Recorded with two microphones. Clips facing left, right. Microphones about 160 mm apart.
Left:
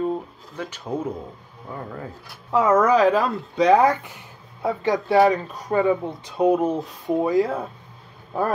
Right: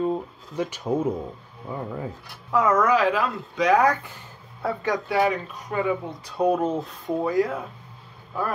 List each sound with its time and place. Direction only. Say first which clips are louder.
0.6 s speech: right 4 dB; 10° right (ahead or behind)
2.5 s speech: left 3 dB; 30° left (ahead or behind); by 4.9 s 15° left (ahead or behind)
5.0 s speech: left 7 dB; 35° left (ahead or behind)